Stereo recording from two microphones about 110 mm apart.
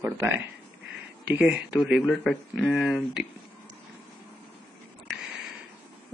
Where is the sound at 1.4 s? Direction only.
10° right (ahead or behind).